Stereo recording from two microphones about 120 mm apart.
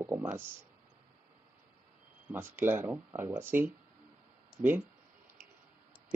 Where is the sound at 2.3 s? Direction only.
20° right (ahead or behind).